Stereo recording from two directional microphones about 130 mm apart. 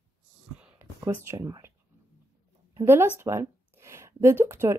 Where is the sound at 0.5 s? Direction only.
15° right (ahead or behind).